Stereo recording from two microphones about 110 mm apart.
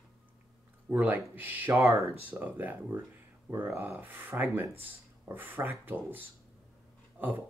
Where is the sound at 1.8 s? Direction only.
25° right (ahead or behind).